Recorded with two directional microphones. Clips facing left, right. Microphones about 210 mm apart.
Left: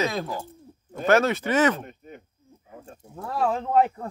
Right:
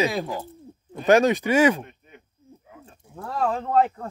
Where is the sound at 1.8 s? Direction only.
45° left (ahead or behind).